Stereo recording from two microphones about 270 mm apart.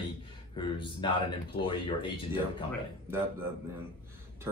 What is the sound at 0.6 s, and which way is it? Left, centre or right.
Speech, centre.